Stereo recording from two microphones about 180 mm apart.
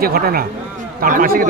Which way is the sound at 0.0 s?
55° right (ahead or behind).